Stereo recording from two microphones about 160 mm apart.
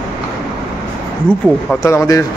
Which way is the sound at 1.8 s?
20° left (ahead or behind).